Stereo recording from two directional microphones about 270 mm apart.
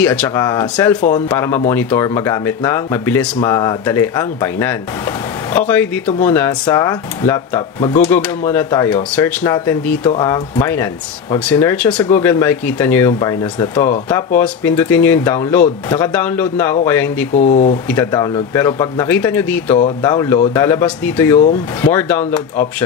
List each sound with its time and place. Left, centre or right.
0.0 s speech: centre
17.3 s speech: left
17.8 s speech: centre